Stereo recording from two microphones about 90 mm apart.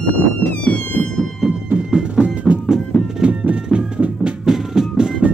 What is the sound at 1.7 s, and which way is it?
Music, 10° right (ahead or behind).